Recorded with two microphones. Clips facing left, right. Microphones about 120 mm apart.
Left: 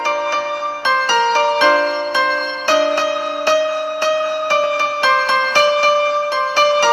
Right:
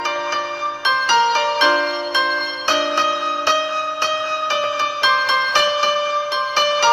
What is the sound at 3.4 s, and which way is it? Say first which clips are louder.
Music: left 7 dB; 45° left (ahead or behind).